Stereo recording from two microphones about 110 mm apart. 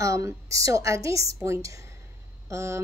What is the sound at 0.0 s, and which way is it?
Speech, 30° right (ahead or behind).